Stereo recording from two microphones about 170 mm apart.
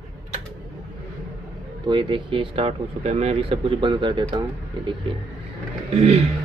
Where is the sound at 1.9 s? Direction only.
30° right (ahead or behind).